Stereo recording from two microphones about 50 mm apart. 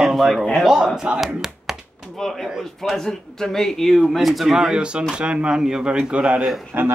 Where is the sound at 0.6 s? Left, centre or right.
Centre.